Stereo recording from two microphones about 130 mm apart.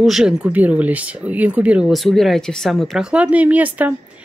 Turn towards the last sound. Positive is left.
turn(degrees=-10)  # may be behind; listen again after turning